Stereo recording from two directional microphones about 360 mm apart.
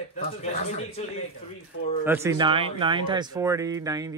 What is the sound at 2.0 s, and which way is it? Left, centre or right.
Speech, centre.